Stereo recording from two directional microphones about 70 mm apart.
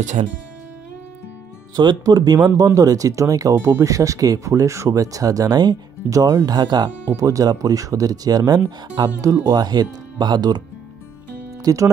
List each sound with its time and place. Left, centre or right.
1.8 s speech: right
2.5 s speech: right
6.0 s speech: right
6.4 s speech: right
7.2 s speech: right
11.6 s speech: right